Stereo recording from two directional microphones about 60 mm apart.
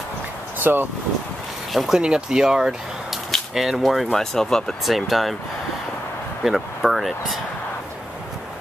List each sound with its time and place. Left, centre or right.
0.6 s speech: right
1.7 s speech: centre
2.0 s speech: centre
6.4 s speech: centre